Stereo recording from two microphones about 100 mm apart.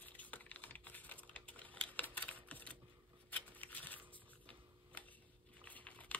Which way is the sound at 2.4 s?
15° left (ahead or behind).